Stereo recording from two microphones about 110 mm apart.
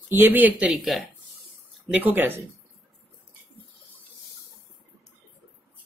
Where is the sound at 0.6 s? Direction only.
Centre (ahead or behind).